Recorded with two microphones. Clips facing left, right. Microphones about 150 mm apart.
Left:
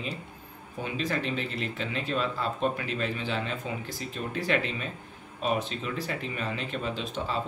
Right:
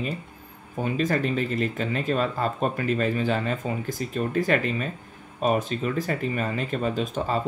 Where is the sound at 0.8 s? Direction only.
45° right (ahead or behind).